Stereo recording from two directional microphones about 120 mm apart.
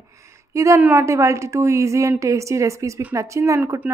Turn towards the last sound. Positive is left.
turn(degrees=-25)  # may be behind; listen again after turning